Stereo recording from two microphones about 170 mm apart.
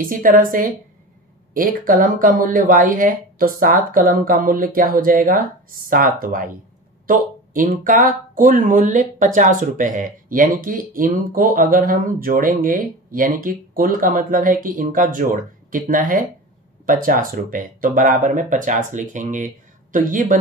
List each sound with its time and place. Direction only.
0.0 s speech: 55° right (ahead or behind)